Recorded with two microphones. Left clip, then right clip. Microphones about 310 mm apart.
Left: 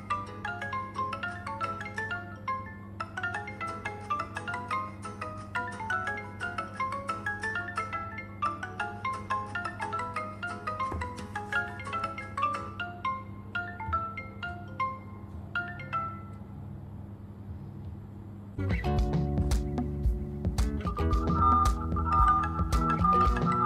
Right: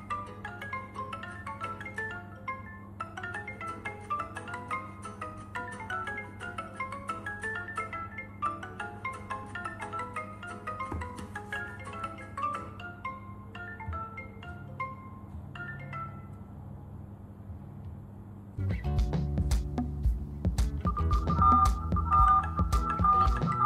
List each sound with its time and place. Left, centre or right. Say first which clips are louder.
0.1 s marimba: left 4 dB; centre
3.0 s music: left 4 dB; centre
14.1 s music: left 6 dB; centre
18.6 s music: left 7 dB; centre